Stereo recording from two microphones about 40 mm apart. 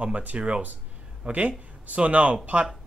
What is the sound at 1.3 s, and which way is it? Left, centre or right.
Speech, right.